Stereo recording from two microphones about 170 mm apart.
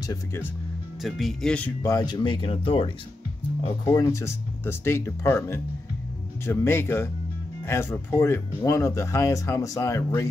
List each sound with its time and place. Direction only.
0.0 s speech: 15° left (ahead or behind)
1.0 s speech: centre (ahead or behind)
1.8 s speech: 20° left (ahead or behind)
3.8 s speech: 20° left (ahead or behind)